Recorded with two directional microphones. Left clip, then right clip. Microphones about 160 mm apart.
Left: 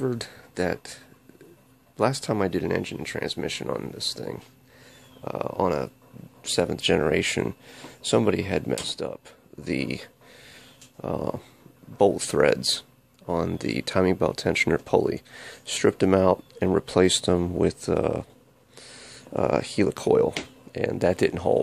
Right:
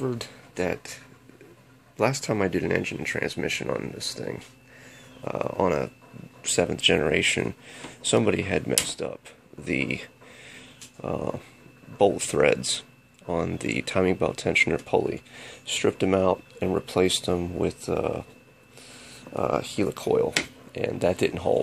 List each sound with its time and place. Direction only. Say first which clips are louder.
0.0 s speech: left 2 dB; 45° left (ahead or behind)
0.7 s speech: left 1 dB; 30° left (ahead or behind)
9.7 s a sound: right 2 dB; 20° left (ahead or behind)
12.0 s speech: left 1 dB; 30° left (ahead or behind)